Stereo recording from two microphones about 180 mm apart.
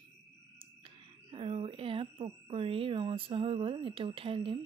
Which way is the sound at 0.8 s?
30° right (ahead or behind).